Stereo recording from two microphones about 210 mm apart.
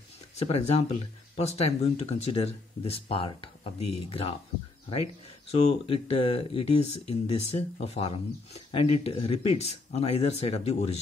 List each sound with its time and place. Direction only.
0.4 s speech: 30° left (ahead or behind)
5.5 s speech: 30° left (ahead or behind)